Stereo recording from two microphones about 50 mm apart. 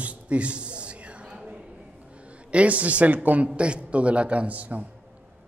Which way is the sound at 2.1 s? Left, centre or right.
Right.